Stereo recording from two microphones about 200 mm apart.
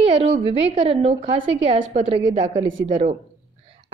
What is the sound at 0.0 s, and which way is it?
A woman's voice, 30° right (ahead or behind).